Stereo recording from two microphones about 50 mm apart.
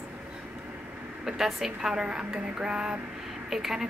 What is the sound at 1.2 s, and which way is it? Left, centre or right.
A woman's voice, centre.